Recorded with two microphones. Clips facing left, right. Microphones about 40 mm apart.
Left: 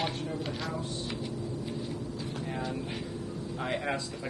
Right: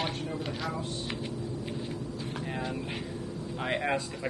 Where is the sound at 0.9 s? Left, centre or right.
Right.